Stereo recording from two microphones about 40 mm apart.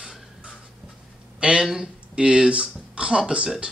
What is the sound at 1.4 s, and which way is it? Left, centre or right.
Speech, right.